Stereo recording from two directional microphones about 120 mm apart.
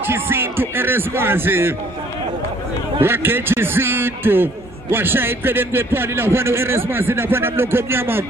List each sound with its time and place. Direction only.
0.0 s a man's voice: 20° right (ahead or behind)
3.0 s a man's voice: 20° right (ahead or behind)